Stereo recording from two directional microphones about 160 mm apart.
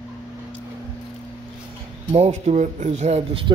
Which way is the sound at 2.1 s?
40° right (ahead or behind).